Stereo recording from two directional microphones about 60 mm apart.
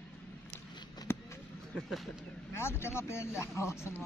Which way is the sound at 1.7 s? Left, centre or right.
Centre.